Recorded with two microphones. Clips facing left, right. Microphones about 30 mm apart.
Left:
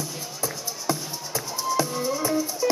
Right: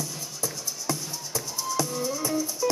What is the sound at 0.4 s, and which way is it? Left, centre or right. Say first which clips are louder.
Music: left 2 dB; left.